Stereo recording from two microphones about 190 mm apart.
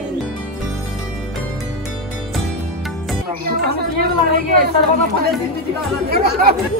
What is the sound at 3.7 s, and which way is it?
Chatter, 55° right (ahead or behind).